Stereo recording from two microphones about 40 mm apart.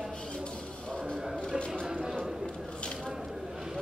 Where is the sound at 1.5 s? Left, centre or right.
Left.